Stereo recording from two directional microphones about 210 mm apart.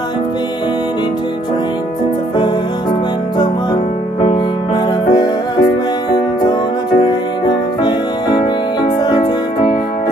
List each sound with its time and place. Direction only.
5.1 s music: 20° left (ahead or behind)
6.9 s music: 20° left (ahead or behind)